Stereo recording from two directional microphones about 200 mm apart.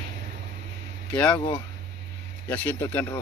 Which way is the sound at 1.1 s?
10° left (ahead or behind).